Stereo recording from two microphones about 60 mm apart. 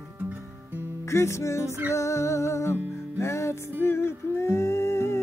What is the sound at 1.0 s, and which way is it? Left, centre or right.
Music, left.